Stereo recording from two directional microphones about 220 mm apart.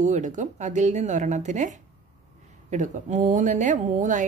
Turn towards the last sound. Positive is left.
turn(degrees=-35)  # may be behind; listen again after turning